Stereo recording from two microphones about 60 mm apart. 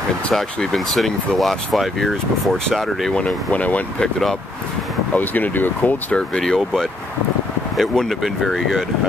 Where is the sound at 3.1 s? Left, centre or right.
Left.